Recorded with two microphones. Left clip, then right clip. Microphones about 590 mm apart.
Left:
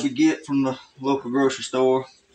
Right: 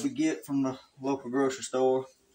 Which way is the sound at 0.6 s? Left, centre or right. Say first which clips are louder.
Left 7 dB; right.